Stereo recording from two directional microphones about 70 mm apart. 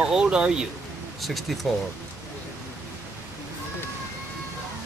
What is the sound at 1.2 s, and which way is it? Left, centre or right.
Speech, centre.